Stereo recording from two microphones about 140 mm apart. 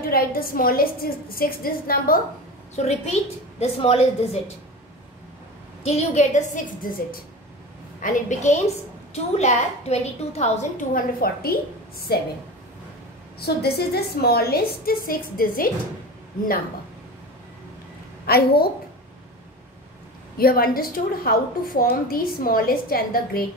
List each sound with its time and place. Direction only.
0.1 s a woman's voice: 90° left
2.7 s a woman's voice: 50° left (ahead or behind)
5.9 s a woman's voice: 50° left (ahead or behind); by 7.2 s 90° left
8.0 s a woman's voice: 65° left (ahead or behind); by 12.2 s 90° left
13.6 s a woman's voice: 90° left
18.2 s a woman's voice: 90° left
20.3 s a woman's voice: 90° left